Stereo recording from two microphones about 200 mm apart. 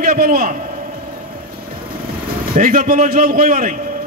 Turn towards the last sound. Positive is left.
turn(degrees=-40)  # may be behind; listen again after turning